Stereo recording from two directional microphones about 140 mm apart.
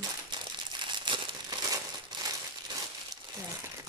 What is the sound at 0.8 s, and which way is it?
Crumpling, 35° right (ahead or behind).